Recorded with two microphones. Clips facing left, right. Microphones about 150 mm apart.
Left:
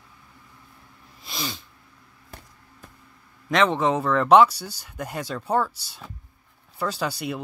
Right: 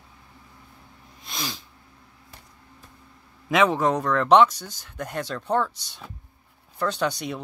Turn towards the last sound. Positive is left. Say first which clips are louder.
# right 1 dB
turn(degrees=5)  # may be behind; listen again after turning